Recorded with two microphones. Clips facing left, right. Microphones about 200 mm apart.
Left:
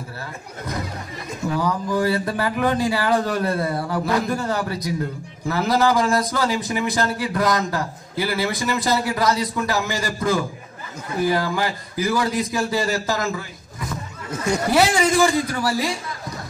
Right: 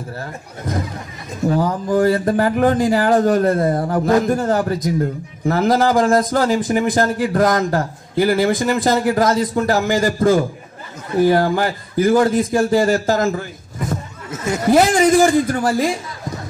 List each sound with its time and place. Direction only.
0.2 s a man's voice: 45° right (ahead or behind)
14.3 s speech: 5° right (ahead or behind)
14.7 s a man's voice: 45° right (ahead or behind)